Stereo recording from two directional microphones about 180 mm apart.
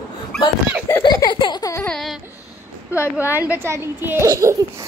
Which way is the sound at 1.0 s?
25° left (ahead or behind).